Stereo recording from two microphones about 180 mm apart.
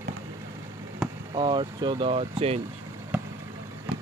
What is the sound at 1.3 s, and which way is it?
Speech, 25° right (ahead or behind).